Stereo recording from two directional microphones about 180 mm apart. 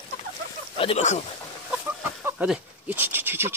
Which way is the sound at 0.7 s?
35° left (ahead or behind).